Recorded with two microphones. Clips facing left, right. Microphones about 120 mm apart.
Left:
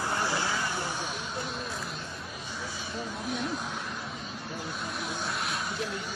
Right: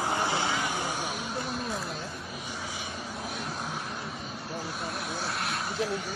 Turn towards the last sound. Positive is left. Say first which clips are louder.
# right 2 dB
turn(degrees=0)  # may be behind; listen again after turning